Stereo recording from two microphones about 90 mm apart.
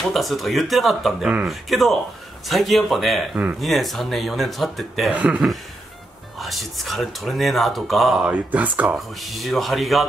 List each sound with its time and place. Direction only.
0.1 s speech: centre (ahead or behind)
8.2 s speech: 15° right (ahead or behind)
8.9 s speech: centre (ahead or behind)